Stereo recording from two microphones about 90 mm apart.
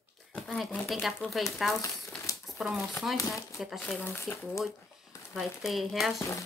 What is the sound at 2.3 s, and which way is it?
Crumpling, 40° left (ahead or behind).